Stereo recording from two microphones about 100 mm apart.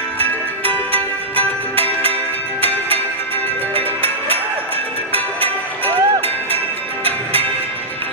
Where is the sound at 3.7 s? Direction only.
70° right (ahead or behind).